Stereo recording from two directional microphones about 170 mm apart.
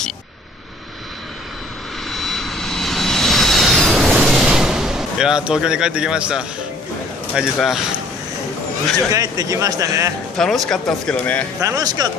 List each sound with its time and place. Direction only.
2.0 s vehicle: centre (ahead or behind)
4.3 s a sound: 5° right (ahead or behind)
7.3 s speech: centre (ahead or behind)
9.1 s speech: 20° right (ahead or behind)
10.3 s speech: 5° left (ahead or behind)
11.6 s speech: 20° right (ahead or behind)